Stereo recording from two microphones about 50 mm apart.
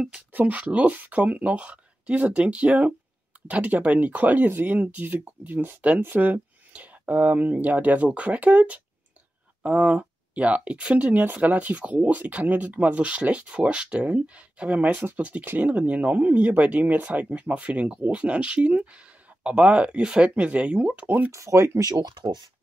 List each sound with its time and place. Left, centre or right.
0.3 s speech: right
5.8 s speech: right
21.0 s speech: right
21.3 s speech: right